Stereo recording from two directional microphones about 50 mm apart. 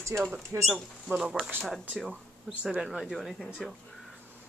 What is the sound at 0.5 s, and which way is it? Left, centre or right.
Speech, right.